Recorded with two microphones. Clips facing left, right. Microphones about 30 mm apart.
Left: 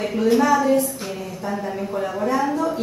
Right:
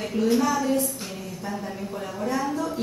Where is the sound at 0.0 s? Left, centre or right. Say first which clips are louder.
Left 4 dB; centre.